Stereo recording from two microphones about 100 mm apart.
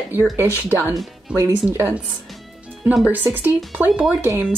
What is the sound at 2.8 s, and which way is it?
Speech, 5° right (ahead or behind).